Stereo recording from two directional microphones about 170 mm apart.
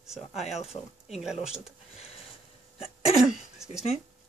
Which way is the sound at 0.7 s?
Centre (ahead or behind).